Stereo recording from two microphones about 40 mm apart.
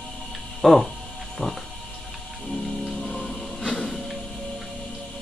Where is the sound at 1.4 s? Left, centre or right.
Left.